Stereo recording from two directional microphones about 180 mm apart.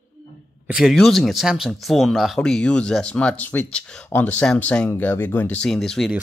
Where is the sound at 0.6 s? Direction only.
5° right (ahead or behind).